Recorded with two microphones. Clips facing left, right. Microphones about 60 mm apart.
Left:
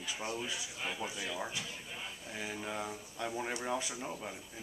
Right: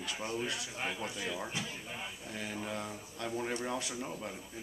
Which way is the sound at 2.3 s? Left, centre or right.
Centre.